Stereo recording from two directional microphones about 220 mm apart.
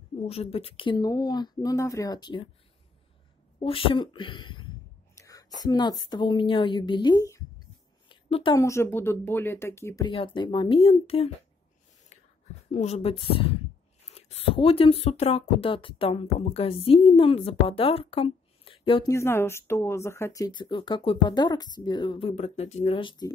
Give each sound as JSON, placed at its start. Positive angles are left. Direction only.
{"t": 0.3, "sound": "speech", "side_deg": 25}
{"t": 3.5, "sound": "speech", "side_deg": 25}
{"t": 5.1, "sound": "a sound", "side_deg": 15}
{"t": 6.0, "sound": "a woman's voice", "side_deg": 20}
{"t": 8.5, "sound": "speech", "side_deg": 15}
{"t": 12.1, "sound": "a sound", "side_deg": 30}
{"t": 12.7, "sound": "speech", "side_deg": 30}